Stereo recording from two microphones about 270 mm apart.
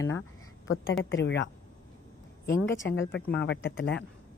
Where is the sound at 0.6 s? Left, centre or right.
Left.